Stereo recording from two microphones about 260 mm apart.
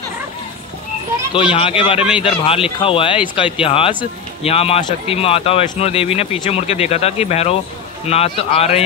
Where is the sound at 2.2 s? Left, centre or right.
Left.